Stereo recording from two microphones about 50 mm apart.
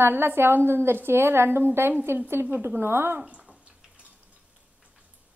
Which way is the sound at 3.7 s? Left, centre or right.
Right.